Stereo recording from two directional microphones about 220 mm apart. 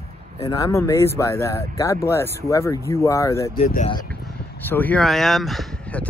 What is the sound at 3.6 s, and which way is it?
Speech, 40° left (ahead or behind).